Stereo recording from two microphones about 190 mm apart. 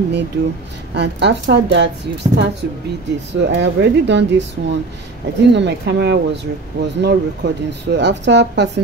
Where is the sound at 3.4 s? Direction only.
70° right (ahead or behind).